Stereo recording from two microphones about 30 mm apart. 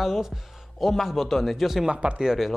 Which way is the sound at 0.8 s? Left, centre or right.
Centre.